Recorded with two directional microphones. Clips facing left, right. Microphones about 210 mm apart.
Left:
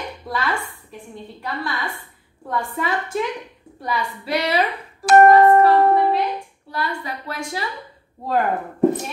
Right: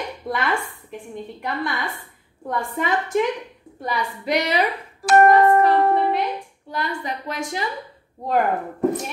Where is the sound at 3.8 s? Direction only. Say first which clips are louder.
Even; 20° right (ahead or behind).